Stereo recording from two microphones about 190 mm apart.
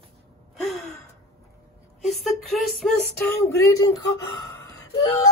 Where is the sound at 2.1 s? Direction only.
Centre (ahead or behind).